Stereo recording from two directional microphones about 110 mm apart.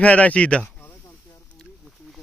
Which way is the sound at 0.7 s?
15° left (ahead or behind).